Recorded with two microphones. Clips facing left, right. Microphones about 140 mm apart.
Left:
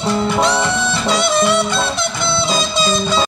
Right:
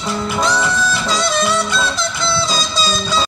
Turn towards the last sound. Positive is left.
turn(degrees=25)  # may be behind; listen again after turning